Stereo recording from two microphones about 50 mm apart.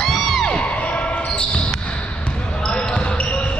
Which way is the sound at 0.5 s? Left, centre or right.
Left.